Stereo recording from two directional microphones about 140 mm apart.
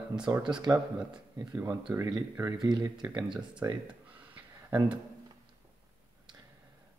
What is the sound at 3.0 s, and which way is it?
Speech, 10° right (ahead or behind).